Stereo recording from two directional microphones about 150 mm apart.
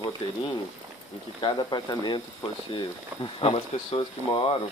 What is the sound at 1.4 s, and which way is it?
Speech, 25° left (ahead or behind).